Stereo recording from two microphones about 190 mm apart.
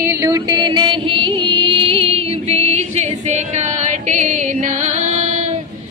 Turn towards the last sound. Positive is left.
turn(degrees=-40)  # may be behind; listen again after turning